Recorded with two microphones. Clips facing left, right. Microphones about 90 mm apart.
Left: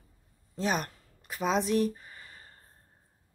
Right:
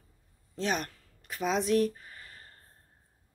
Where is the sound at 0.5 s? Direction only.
5° left (ahead or behind).